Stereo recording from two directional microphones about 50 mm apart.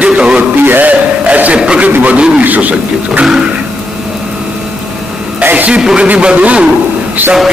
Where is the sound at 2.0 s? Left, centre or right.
Right.